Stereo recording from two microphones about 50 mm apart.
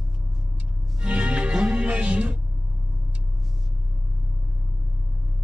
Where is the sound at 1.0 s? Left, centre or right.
Right.